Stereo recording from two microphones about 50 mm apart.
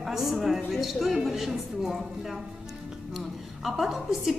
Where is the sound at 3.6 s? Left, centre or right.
Centre.